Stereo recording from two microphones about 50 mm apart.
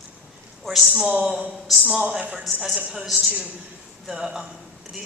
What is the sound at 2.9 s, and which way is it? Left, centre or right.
A man's voice, centre.